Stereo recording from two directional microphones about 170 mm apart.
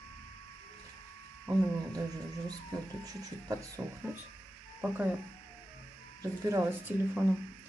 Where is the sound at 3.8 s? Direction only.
15° right (ahead or behind).